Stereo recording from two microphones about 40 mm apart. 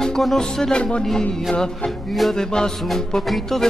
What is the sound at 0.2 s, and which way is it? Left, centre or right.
Music, centre.